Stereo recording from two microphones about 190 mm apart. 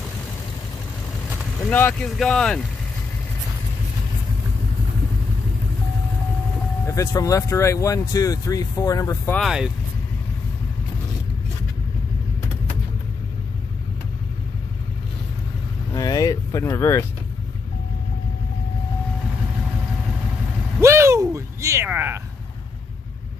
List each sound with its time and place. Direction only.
1.7 s speech: 10° left (ahead or behind)
6.9 s speech: 15° left (ahead or behind)
9.3 s speech: centre (ahead or behind)
15.9 s speech: 20° left (ahead or behind)
20.8 s a sound: 15° right (ahead or behind)